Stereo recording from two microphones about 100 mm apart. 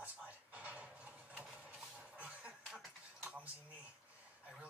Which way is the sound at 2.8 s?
5° right (ahead or behind).